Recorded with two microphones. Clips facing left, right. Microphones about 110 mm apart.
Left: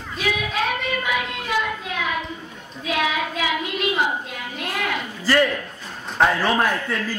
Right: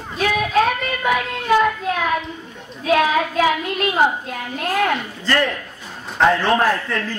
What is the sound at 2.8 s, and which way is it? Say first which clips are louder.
A child's voice: right 7 dB; 45° right (ahead or behind).